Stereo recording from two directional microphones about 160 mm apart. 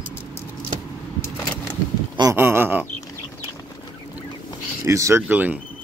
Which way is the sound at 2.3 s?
15° right (ahead or behind).